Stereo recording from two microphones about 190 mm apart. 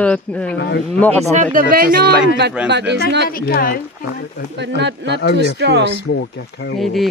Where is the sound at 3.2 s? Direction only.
50° left (ahead or behind).